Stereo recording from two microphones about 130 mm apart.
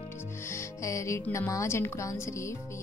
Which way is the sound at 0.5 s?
25° left (ahead or behind).